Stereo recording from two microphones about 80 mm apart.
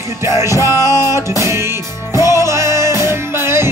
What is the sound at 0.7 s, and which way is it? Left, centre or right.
Music, left.